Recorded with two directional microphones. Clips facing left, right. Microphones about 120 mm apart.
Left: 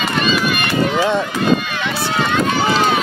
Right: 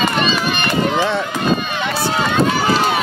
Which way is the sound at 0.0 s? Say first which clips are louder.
Even; 30° right (ahead or behind).